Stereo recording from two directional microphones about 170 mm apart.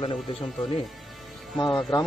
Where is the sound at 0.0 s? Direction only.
30° left (ahead or behind).